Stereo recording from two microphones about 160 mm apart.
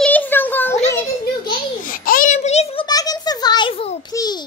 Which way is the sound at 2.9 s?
25° left (ahead or behind).